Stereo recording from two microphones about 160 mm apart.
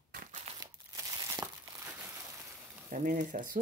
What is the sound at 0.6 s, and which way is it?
Crumpling, 25° right (ahead or behind).